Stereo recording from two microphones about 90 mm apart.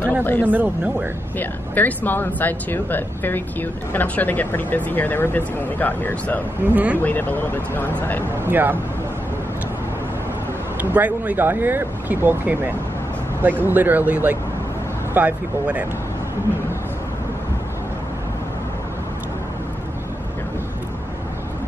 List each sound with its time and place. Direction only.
0.2 s speech: 20° left (ahead or behind)
0.5 s speech: 20° right (ahead or behind)
1.4 s speech: 20° left (ahead or behind)
6.7 s speech: 15° right (ahead or behind)
7.0 s speech: 20° left (ahead or behind)
8.5 s speech: 20° right (ahead or behind)
10.8 s speech: 15° right (ahead or behind)